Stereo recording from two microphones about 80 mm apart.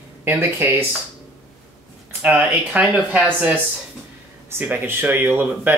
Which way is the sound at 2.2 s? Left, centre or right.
Centre.